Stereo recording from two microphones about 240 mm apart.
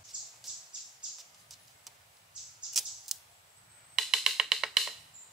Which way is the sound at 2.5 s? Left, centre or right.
Centre.